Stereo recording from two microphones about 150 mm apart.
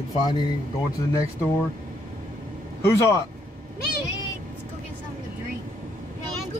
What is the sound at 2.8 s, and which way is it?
Speech, 20° left (ahead or behind).